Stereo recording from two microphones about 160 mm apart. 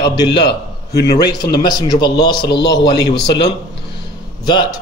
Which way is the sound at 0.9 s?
85° left.